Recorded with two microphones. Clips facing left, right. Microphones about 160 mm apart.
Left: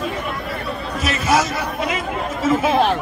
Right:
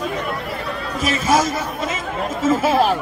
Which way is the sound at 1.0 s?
45° right (ahead or behind).